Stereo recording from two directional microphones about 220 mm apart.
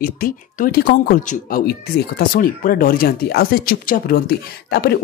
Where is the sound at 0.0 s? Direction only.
40° left (ahead or behind).